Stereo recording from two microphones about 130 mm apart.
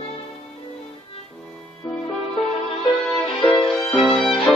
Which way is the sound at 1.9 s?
5° left (ahead or behind).